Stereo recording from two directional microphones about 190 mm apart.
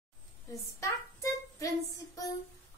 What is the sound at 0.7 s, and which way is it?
Child singing, 15° left (ahead or behind).